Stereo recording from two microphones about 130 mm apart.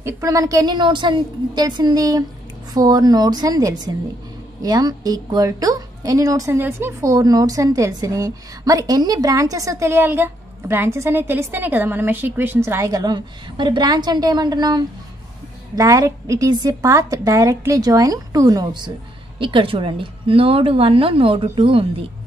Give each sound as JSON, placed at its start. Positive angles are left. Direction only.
{"t": 0.0, "sound": "a woman's voice", "side_deg": -25}